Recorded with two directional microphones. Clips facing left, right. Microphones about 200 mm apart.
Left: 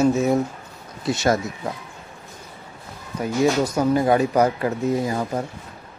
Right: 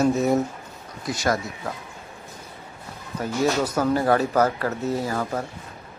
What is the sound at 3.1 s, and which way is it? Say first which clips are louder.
Speech: left 3 dB; 10° left (ahead or behind).